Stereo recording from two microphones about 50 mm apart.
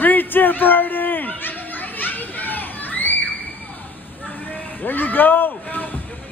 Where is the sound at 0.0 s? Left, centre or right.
Left.